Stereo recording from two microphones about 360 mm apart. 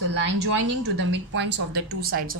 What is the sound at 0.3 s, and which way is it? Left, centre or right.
Speech, right.